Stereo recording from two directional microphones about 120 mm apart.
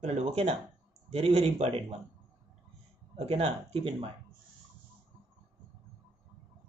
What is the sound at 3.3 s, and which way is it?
Speech, 55° right (ahead or behind).